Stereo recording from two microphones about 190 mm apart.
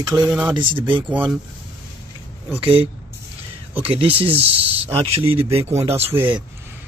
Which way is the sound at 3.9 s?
30° right (ahead or behind).